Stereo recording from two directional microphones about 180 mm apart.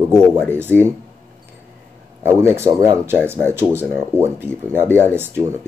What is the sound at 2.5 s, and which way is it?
Speech, 15° right (ahead or behind).